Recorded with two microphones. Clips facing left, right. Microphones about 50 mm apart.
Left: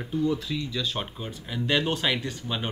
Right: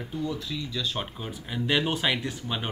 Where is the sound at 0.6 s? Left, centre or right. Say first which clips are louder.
Left 1 dB; centre.